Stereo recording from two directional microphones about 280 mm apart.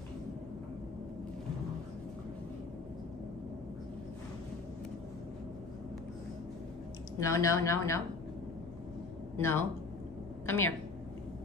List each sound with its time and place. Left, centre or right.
7.2 s speech: centre
9.4 s a woman's voice: centre